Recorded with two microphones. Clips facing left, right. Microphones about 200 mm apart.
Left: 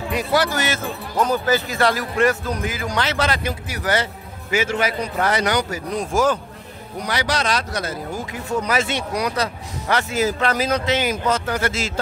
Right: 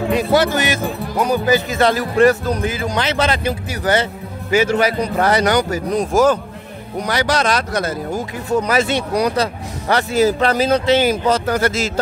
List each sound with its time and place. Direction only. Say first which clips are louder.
0.1 s speech: right 4 dB; 25° right (ahead or behind); by 7.9 s 50° right (ahead or behind)
8.6 s speech: right 5 dB; 35° right (ahead or behind)